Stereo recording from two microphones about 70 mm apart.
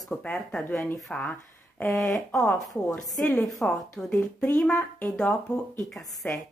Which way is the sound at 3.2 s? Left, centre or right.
Centre.